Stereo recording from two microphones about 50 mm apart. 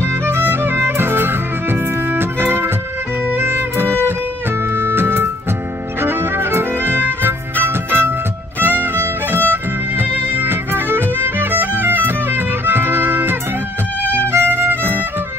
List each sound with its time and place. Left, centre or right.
0.0 s music: right
2.0 s organ: right
3.3 s music: right